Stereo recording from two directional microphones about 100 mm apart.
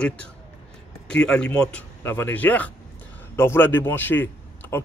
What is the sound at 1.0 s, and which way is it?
A man's voice, 10° left (ahead or behind).